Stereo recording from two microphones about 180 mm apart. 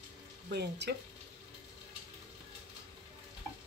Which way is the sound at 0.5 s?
65° right (ahead or behind).